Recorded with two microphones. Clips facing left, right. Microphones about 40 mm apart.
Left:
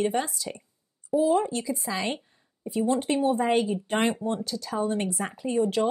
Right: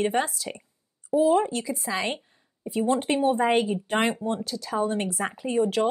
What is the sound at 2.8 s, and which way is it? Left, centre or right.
Speech, right.